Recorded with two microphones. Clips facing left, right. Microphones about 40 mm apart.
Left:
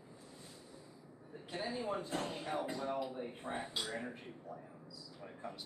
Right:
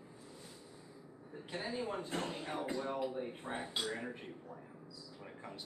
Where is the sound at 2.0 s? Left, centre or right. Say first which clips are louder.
Even; right.